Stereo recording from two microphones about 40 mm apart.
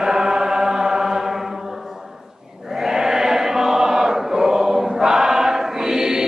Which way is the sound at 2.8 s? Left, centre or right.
Centre.